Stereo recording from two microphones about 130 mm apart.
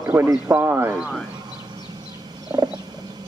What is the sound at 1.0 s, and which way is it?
Speech, centre (ahead or behind).